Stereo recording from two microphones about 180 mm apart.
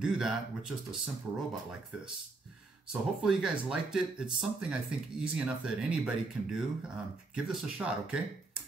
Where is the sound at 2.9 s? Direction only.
5° right (ahead or behind).